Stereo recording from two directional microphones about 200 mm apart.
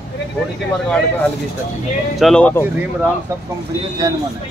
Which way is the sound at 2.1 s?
5° left (ahead or behind).